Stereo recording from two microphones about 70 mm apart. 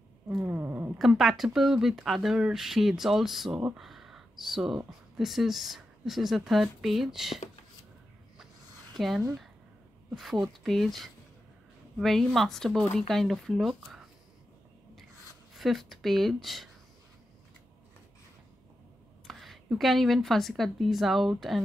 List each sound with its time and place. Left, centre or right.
0.5 s cat: right
0.9 s speech: centre
3.7 s a sound: centre
5.1 s speech: centre
8.9 s speech: centre
10.4 s speech: centre
15.5 s speech: centre
19.2 s a sound: centre
19.7 s speech: centre